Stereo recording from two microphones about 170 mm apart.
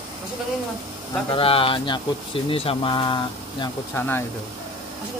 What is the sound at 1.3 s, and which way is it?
Speech, 30° left (ahead or behind).